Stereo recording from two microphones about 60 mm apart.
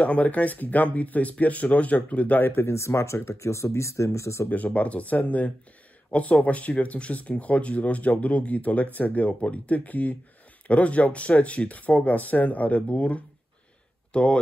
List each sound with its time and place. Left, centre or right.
0.0 s speech: left
2.4 s speech: left
4.5 s speech: left